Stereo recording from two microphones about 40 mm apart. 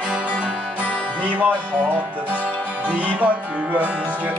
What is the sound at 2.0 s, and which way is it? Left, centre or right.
Music, right.